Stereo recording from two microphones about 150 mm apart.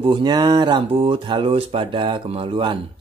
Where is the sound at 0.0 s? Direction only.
30° right (ahead or behind).